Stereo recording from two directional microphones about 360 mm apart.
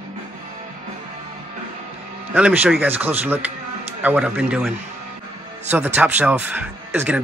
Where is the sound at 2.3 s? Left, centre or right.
Centre.